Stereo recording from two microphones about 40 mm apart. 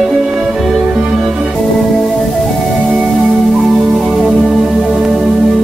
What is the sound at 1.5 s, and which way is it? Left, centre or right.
Music, centre.